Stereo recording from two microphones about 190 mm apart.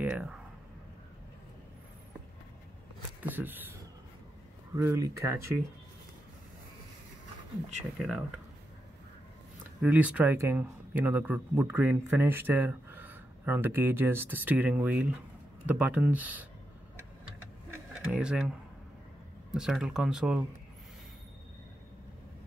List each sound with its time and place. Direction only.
0.0 s speech: 5° right (ahead or behind)
3.2 s speech: 10° right (ahead or behind)
4.7 s speech: 15° right (ahead or behind)
9.8 s speech: 10° right (ahead or behind)
18.0 s speech: 5° right (ahead or behind)
19.5 s speech: 5° right (ahead or behind)